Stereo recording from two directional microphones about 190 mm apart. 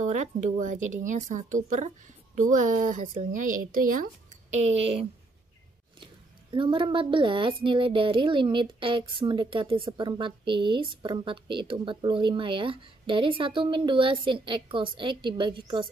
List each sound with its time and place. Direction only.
0.0 s a woman's voice: 40° right (ahead or behind)
6.5 s a woman's voice: 25° right (ahead or behind)